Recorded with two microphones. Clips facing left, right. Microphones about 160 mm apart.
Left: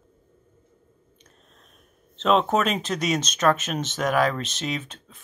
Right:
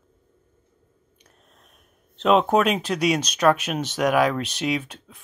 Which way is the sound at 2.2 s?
5° right (ahead or behind).